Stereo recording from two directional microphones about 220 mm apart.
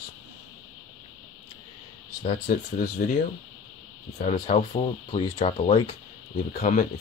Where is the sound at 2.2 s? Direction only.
35° left (ahead or behind).